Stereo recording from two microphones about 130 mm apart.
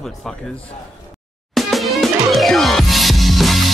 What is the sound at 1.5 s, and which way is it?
Music, centre (ahead or behind).